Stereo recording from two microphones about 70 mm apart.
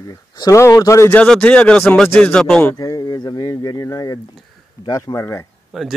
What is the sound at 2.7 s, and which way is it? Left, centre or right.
Speech, left.